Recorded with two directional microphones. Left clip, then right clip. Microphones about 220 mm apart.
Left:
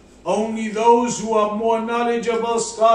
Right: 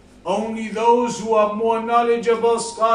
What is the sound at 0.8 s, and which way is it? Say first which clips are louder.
A man's voice: left 1 dB; 5° right (ahead or behind).